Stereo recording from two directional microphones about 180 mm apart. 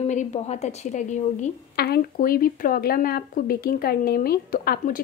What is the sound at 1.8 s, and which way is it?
A woman's voice, 55° left (ahead or behind).